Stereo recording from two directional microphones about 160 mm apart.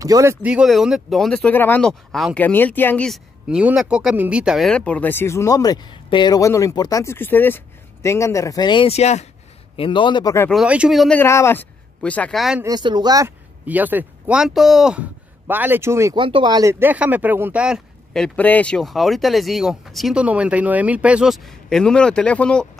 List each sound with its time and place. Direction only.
0.0 s speech: 20° right (ahead or behind)
0.5 s speech: 5° right (ahead or behind)
3.1 s speech: 5° right (ahead or behind); by 9.3 s 45° left (ahead or behind)
9.8 s a man's voice: 30° left (ahead or behind)
10.5 s speech: 5° right (ahead or behind)
11.1 s speech: 15° left (ahead or behind); by 12.6 s centre (ahead or behind)
12.6 s speech: 25° right (ahead or behind)
13.7 s speech: 10° right (ahead or behind)
16.2 s speech: 30° right (ahead or behind)
16.8 s speech: 10° right (ahead or behind); by 22.7 s 5° left (ahead or behind)